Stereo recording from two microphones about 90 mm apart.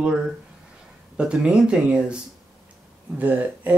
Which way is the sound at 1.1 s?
10° right (ahead or behind).